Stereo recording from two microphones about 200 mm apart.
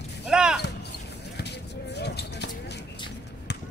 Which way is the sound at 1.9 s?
55° left (ahead or behind).